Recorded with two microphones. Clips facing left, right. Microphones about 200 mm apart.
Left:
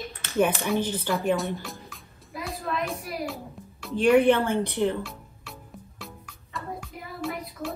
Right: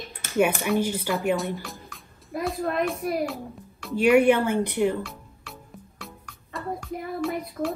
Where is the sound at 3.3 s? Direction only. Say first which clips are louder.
Right 3 dB; centre (ahead or behind).